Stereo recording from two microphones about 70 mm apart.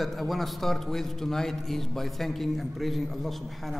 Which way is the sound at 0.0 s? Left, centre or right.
Centre.